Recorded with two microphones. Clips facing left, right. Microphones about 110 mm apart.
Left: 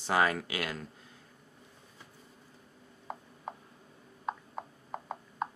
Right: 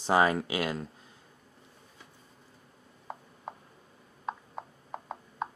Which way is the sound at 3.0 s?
Centre (ahead or behind).